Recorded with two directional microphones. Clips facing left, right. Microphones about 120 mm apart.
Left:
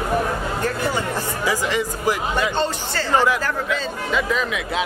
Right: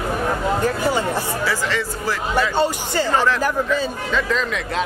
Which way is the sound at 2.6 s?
15° right (ahead or behind).